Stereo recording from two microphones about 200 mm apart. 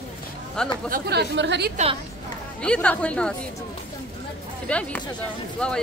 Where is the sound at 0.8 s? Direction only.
50° right (ahead or behind).